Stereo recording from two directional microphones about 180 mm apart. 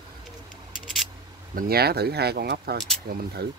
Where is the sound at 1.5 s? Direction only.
60° right (ahead or behind).